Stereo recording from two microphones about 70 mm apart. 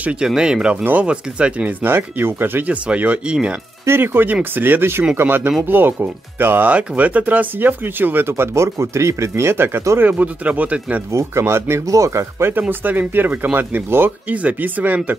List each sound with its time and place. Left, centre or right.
0.3 s speech: centre
1.8 s speech: right
2.7 s speech: centre
3.8 s speech: right
11.1 s speech: right